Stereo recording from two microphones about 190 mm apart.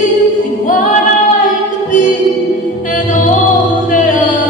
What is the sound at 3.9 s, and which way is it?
Chant, 45° left (ahead or behind).